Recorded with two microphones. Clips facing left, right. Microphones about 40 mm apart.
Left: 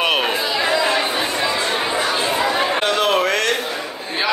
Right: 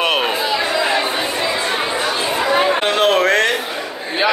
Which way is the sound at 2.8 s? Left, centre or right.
Right.